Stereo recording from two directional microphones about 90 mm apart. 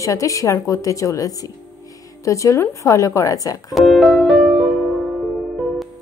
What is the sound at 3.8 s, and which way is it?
Music, centre (ahead or behind).